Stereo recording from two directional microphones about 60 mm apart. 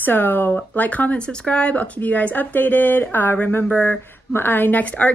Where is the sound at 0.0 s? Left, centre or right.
Left.